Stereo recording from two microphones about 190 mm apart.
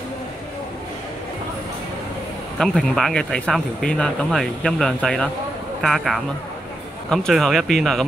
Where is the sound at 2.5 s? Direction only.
5° left (ahead or behind).